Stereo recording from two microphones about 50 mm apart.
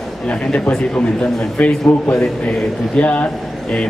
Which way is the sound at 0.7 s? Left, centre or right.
Left.